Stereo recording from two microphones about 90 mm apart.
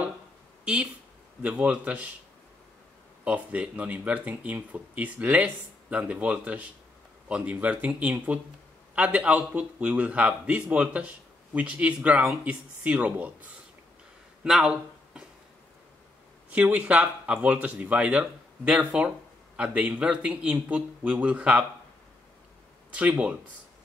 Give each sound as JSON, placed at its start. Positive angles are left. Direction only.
{"t": 1.4, "sound": "speech", "side_deg": -15}
{"t": 3.3, "sound": "speech", "side_deg": -15}
{"t": 14.4, "sound": "a sound", "side_deg": -10}
{"t": 16.4, "sound": "speech", "side_deg": -15}
{"t": 22.9, "sound": "speech", "side_deg": -15}